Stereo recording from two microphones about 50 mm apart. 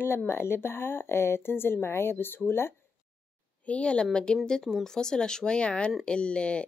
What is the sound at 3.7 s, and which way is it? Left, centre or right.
Speech, left.